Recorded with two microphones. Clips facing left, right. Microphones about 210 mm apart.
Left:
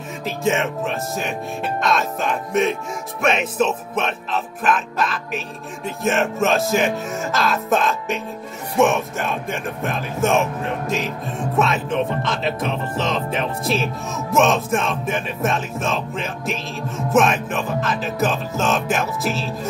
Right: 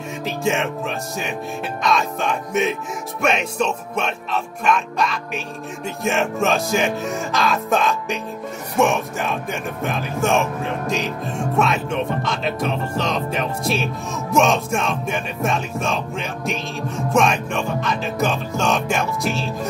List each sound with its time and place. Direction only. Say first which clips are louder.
0.2 s speech: left 1 dB; centre (ahead or behind)